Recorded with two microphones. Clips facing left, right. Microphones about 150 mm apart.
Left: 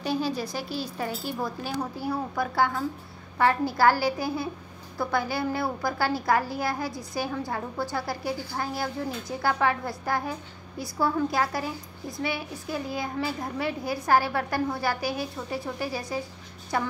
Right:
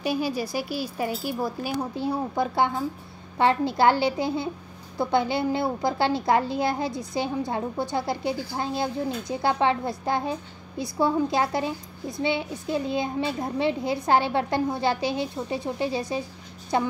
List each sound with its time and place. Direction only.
0.0 s a woman's voice: 10° right (ahead or behind)
2.0 s a child's voice: 25° right (ahead or behind)